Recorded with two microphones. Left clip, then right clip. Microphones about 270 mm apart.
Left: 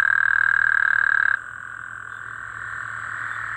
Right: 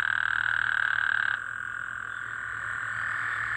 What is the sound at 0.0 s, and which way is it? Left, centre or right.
Frog, centre.